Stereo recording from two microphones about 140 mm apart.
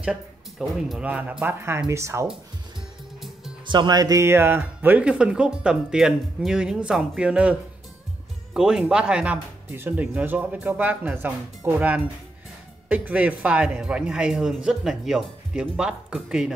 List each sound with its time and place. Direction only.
0.0 s speech: 5° right (ahead or behind); by 2.2 s 20° right (ahead or behind)
3.2 s music: centre (ahead or behind)
3.6 s speech: 30° right (ahead or behind); by 7.5 s 10° right (ahead or behind)
8.5 s speech: 5° right (ahead or behind)